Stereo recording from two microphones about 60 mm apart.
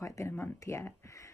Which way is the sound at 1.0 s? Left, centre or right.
Left.